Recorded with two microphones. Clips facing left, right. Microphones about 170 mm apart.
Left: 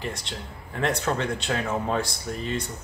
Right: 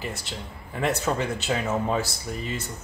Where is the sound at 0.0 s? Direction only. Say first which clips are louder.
Even; 5° right (ahead or behind).